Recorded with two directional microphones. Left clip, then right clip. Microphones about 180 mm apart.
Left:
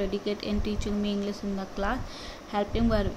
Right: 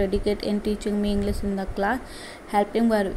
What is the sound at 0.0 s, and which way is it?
A woman's voice, 20° right (ahead or behind).